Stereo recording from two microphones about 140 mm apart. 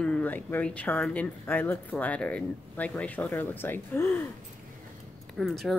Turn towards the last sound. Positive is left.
turn(degrees=0)  # may be behind; listen again after turning